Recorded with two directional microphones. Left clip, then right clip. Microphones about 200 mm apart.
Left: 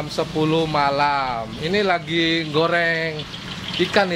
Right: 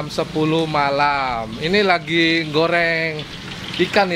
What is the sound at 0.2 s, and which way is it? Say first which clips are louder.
Speech: right 1 dB; 10° right (ahead or behind).